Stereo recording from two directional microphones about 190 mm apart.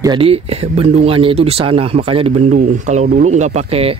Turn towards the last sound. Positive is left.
turn(degrees=-35)  # may be behind; listen again after turning